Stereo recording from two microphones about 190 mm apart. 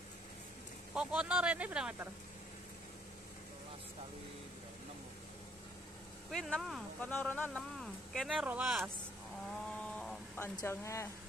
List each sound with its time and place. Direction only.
0.9 s speech: 5° right (ahead or behind)
6.3 s speech: centre (ahead or behind)
9.8 s a sound: 5° left (ahead or behind)
10.5 s speech: 15° left (ahead or behind)